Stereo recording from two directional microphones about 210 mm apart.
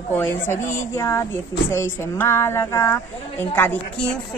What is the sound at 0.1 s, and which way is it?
A woman's voice, 10° left (ahead or behind).